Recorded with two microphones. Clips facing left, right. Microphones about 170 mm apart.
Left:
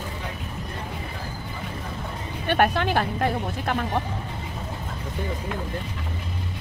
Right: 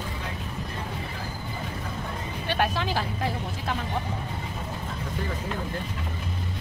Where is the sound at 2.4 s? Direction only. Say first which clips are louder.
Left 6 dB; 60° left (ahead or behind).